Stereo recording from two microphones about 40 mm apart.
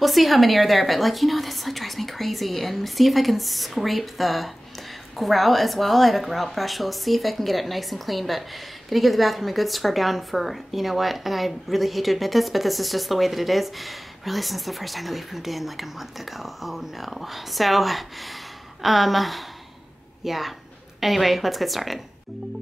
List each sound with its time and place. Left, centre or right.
0.0 s a woman's voice: centre